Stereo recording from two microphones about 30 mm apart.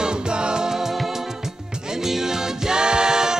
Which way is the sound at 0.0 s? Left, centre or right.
Right.